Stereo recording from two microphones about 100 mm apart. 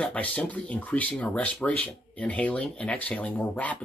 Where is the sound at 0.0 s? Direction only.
15° left (ahead or behind).